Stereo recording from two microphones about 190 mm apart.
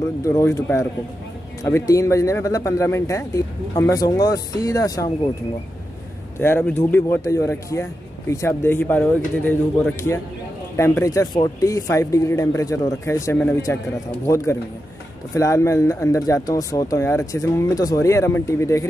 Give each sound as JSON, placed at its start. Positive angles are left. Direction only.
{"t": 0.3, "sound": "speech", "side_deg": 15}
{"t": 6.4, "sound": "speech", "side_deg": 10}